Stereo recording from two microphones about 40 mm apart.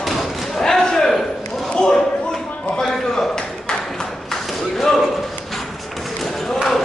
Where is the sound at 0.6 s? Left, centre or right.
Centre.